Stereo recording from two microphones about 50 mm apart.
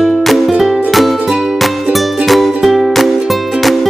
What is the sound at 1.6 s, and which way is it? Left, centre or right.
Music, centre.